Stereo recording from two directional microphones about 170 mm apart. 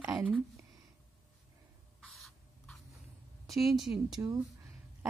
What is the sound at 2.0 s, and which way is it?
Rodents, centre (ahead or behind).